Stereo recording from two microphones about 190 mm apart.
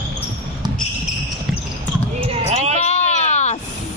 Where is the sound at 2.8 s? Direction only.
35° left (ahead or behind).